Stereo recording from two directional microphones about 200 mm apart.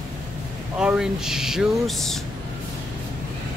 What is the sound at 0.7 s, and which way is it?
Speech, 5° right (ahead or behind).